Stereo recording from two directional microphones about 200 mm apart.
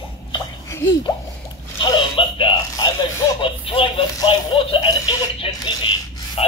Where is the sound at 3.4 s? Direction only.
25° left (ahead or behind).